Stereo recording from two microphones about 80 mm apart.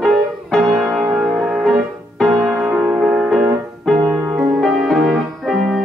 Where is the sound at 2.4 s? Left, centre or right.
Centre.